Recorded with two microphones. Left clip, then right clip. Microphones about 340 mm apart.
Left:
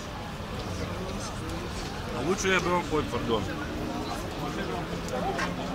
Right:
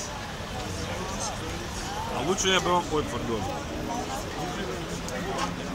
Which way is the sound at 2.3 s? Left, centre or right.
Centre.